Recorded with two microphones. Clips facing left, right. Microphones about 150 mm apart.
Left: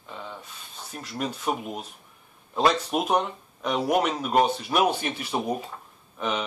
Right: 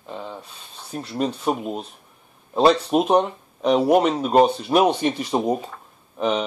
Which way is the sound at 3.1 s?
35° right (ahead or behind).